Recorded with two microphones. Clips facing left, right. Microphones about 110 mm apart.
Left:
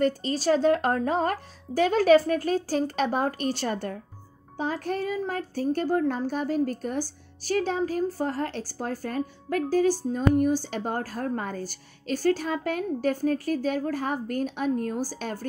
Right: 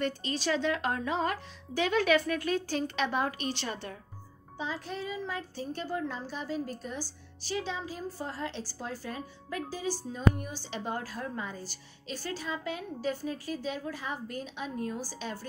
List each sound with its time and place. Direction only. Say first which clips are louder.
0.0 s speech: left 7 dB; 40° left (ahead or behind)